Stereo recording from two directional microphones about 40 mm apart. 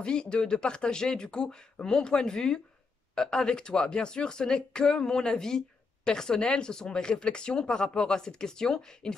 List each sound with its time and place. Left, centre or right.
0.0 s speech: left